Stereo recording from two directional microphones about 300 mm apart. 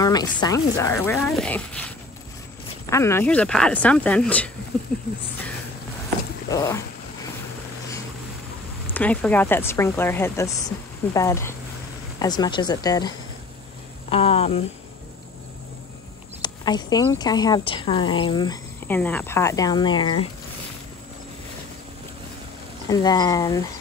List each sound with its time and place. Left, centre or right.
0.0 s speech: centre
6.5 s speech: centre
8.9 s speech: centre
16.3 s speech: centre
22.8 s speech: centre